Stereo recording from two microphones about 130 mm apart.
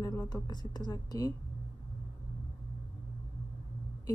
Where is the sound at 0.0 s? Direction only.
30° left (ahead or behind).